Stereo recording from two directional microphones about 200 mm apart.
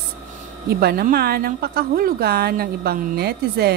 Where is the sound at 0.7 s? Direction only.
50° right (ahead or behind).